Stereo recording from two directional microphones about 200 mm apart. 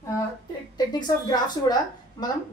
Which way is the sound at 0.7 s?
20° left (ahead or behind).